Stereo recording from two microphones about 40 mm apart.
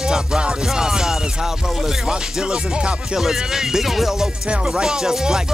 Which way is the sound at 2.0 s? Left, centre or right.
Centre.